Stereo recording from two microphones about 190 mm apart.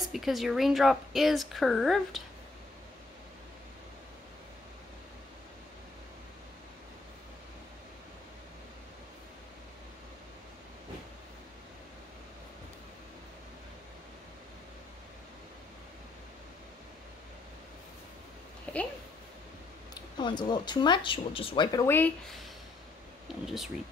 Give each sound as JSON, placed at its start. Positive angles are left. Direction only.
{"t": 0.0, "sound": "a woman's voice", "side_deg": 0}
{"t": 18.7, "sound": "a sound", "side_deg": 10}
{"t": 19.9, "sound": "speech", "side_deg": 25}
{"t": 21.8, "sound": "speech", "side_deg": 10}
{"t": 23.4, "sound": "a woman's voice", "side_deg": 0}